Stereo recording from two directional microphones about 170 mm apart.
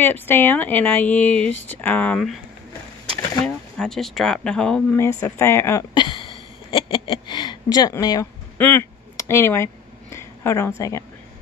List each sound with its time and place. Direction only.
0.0 s speech: 10° left (ahead or behind)
8.5 s a sound: 10° left (ahead or behind)
10.8 s speech: 20° left (ahead or behind)